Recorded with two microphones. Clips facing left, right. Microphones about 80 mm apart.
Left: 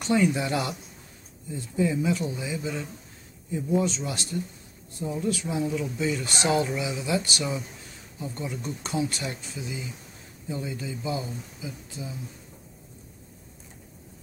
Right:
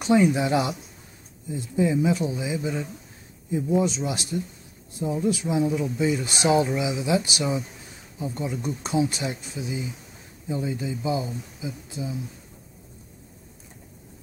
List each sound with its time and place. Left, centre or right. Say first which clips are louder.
0.0 s speech: right 4 dB; centre